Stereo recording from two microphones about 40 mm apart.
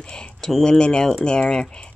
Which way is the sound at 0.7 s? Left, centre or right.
Left.